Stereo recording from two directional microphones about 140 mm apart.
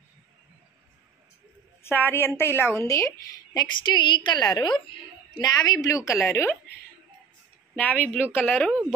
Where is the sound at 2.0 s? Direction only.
15° left (ahead or behind).